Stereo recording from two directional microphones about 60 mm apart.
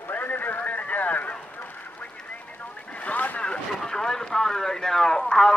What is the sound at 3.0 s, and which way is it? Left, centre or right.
Vehicle, left.